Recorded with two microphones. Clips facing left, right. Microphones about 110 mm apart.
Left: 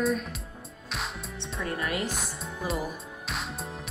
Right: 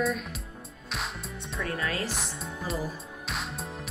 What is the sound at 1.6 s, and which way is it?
Speech, 20° left (ahead or behind).